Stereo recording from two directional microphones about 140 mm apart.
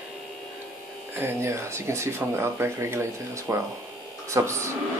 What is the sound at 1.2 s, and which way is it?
Speech, 20° right (ahead or behind).